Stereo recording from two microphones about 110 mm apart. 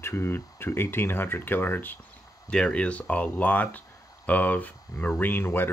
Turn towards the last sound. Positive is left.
turn(degrees=20)  # may be behind; listen again after turning